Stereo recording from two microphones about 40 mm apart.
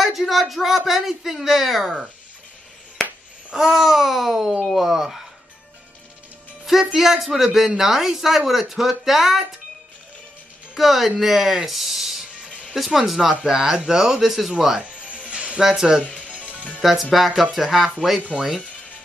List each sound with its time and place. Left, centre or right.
0.0 s speech: centre
3.7 s speech: centre
6.6 s speech: centre
10.7 s speech: centre
13.3 s speech: centre
14.6 s speech: centre
15.2 s music: right
15.6 s speech: centre
16.8 s speech: centre
18.3 s speech: centre